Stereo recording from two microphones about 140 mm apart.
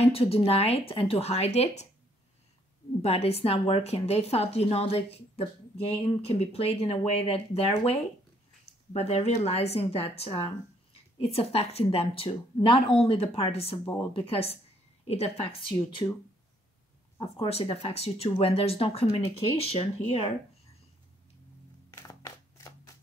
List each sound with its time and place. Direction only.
0.0 s speech: 45° left (ahead or behind)
3.0 s speech: 45° left (ahead or behind)
15.7 s speech: 35° left (ahead or behind)
17.2 s speech: 40° left (ahead or behind)
21.9 s crushing: 20° left (ahead or behind)